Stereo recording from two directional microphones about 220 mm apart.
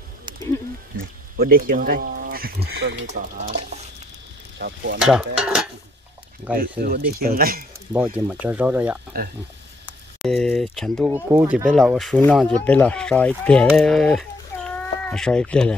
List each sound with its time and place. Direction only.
1.4 s speech: 40° right (ahead or behind)
3.3 s stir: 30° right (ahead or behind)
4.6 s speech: 50° right (ahead or behind)
5.0 s speech: 5° right (ahead or behind)
6.8 s speech: 45° right (ahead or behind)
8.3 s speech: 5° right (ahead or behind)
10.2 s speech: centre (ahead or behind)
11.1 s speech: 10° right (ahead or behind); by 15.7 s 5° left (ahead or behind)